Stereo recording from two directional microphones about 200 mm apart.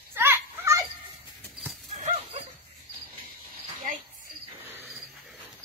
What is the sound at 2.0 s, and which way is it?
Dog, 35° right (ahead or behind).